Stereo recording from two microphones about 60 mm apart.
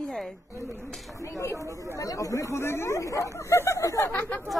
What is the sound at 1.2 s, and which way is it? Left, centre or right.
Speech, left.